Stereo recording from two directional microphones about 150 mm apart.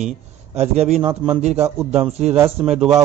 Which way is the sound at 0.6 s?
45° right (ahead or behind).